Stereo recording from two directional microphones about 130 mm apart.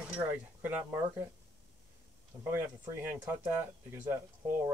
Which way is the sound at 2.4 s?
20° right (ahead or behind).